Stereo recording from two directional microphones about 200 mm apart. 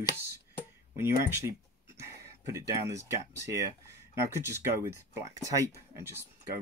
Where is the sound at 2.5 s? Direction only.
15° right (ahead or behind).